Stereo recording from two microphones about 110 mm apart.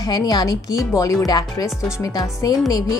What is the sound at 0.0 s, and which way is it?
A woman's voice, 35° left (ahead or behind).